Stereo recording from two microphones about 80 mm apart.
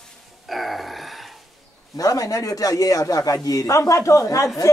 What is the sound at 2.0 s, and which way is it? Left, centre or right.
Speech, left.